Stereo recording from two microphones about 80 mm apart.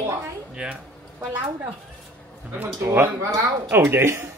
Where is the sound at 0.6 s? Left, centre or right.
Centre.